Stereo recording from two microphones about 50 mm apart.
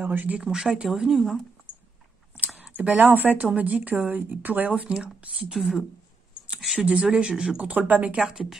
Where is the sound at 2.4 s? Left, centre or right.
Right.